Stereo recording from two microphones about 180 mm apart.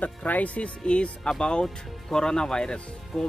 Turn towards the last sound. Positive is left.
turn(degrees=5)  # may be behind; listen again after turning